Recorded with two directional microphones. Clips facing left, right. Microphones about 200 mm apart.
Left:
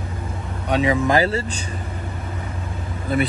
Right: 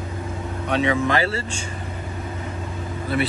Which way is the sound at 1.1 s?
40° left (ahead or behind).